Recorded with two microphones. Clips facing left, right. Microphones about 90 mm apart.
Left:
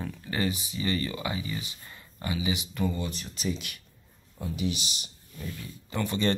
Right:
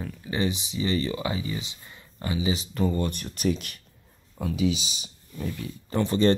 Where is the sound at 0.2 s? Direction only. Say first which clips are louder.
Right 3 dB; 20° right (ahead or behind); by 3.8 s 45° right (ahead or behind).